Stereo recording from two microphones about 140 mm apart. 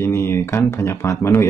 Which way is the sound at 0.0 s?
20° left (ahead or behind).